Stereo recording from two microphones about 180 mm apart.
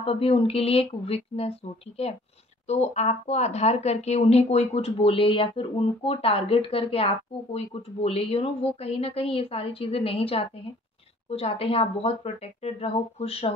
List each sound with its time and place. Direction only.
0.0 s speech: 35° left (ahead or behind)